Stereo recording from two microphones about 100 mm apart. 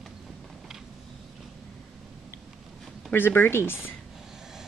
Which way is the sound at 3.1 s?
20° left (ahead or behind).